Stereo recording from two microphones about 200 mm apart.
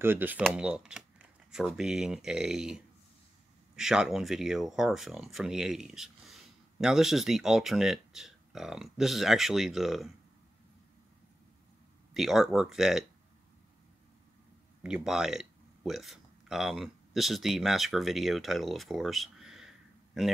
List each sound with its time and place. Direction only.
0.0 s speech: 10° right (ahead or behind)
12.1 s speech: centre (ahead or behind)
15.0 s speech: 5° right (ahead or behind)